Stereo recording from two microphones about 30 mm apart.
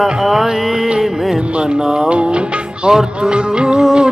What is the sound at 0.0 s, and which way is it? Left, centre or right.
Music, centre.